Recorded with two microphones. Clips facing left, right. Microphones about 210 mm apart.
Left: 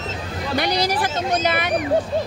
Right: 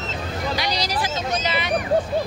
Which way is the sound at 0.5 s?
55° left (ahead or behind).